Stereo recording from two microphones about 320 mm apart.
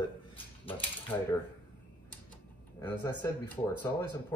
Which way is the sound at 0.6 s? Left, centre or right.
Centre.